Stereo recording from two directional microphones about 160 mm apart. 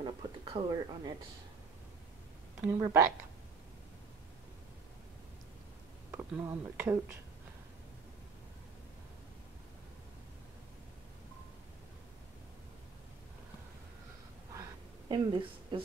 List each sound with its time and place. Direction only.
0.0 s speech: 30° right (ahead or behind)
2.7 s a woman's voice: 20° right (ahead or behind)
6.1 s speech: 15° right (ahead or behind)
15.0 s a woman's voice: 30° right (ahead or behind)